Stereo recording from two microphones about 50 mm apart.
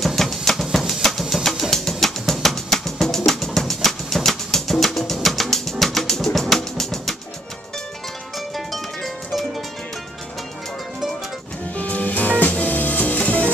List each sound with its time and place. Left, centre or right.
0.0 s music: centre
8.5 s music: centre
11.7 s music: left